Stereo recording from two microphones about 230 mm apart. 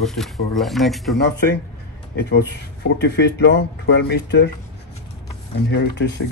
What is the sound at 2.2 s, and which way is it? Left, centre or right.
Speech, left.